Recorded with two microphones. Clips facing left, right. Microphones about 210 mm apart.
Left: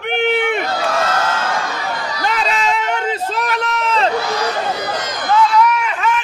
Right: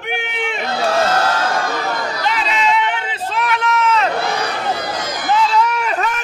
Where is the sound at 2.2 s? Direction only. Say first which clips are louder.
Left 1 dB; 45° left (ahead or behind).